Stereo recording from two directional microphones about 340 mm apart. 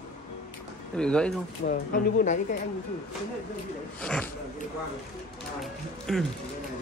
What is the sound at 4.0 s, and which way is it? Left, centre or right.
Speech, centre.